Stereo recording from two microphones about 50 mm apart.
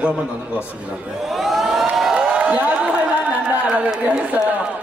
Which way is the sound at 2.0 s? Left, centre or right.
Centre.